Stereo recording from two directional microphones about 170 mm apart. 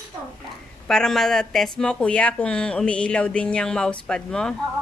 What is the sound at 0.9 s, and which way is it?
Speech, 5° left (ahead or behind).